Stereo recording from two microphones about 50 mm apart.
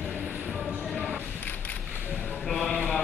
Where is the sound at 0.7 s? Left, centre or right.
Left.